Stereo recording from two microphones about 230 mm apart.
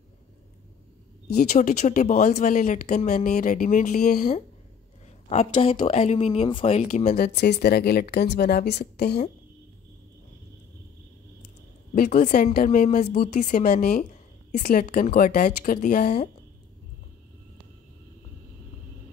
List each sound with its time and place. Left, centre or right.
1.3 s speech: left
5.3 s speech: left
11.9 s speech: left